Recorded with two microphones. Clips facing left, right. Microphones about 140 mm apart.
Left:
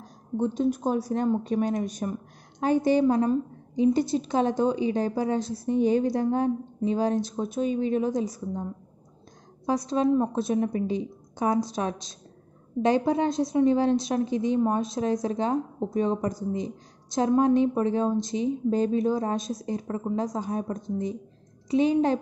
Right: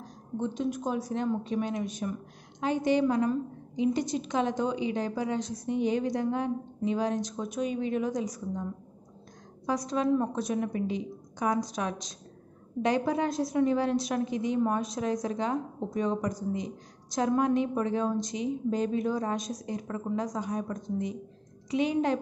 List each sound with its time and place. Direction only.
0.4 s a woman's voice: 35° left (ahead or behind)
9.7 s a woman's voice: 30° left (ahead or behind)